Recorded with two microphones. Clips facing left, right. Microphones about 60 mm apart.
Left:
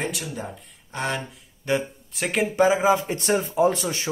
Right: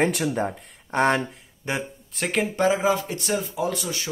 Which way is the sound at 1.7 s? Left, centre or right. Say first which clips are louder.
Left 4 dB; centre.